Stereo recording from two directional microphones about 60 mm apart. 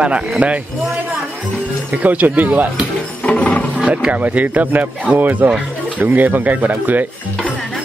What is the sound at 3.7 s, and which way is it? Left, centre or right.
Speech, centre.